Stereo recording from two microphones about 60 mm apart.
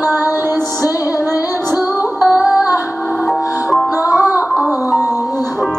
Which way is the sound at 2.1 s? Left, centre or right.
Left.